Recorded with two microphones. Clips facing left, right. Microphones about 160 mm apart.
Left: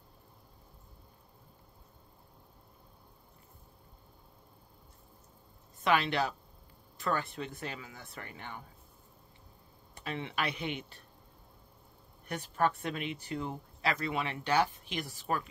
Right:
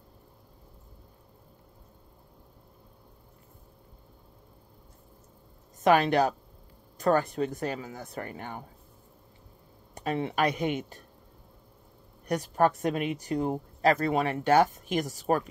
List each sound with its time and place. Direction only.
5.9 s speech: 45° right (ahead or behind)
9.9 s speech: 40° right (ahead or behind)
12.3 s speech: 40° right (ahead or behind)